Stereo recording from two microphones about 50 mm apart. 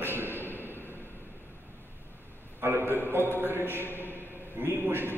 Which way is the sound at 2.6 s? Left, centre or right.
Right.